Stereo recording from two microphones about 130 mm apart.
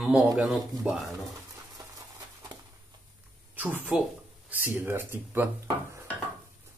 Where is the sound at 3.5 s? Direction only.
15° right (ahead or behind).